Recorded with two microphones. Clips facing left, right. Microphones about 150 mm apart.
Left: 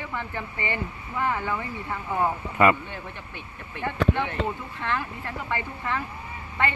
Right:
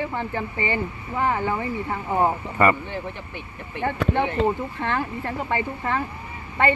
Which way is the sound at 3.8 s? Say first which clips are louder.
Right 3 dB; 35° right (ahead or behind).